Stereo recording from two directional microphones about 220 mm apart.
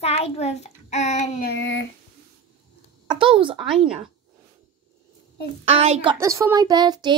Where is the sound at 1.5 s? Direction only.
50° left (ahead or behind).